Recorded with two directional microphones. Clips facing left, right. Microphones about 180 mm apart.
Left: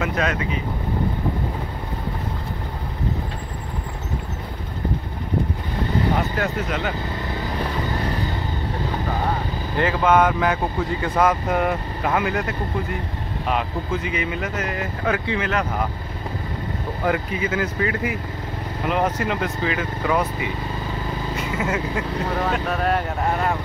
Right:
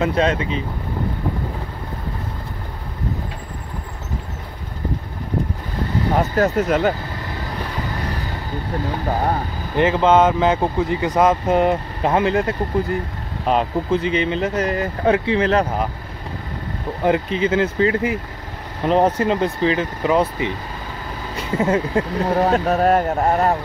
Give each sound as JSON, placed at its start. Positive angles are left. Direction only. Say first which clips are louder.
{"t": 0.0, "sound": "speech", "louder": "right 5 dB", "side_deg": -30}
{"t": 6.3, "sound": "speech", "louder": "right 7 dB", "side_deg": -40}
{"t": 9.8, "sound": "speech", "louder": "right 3 dB", "side_deg": -25}
{"t": 17.0, "sound": "speech", "louder": "right 5 dB", "side_deg": -25}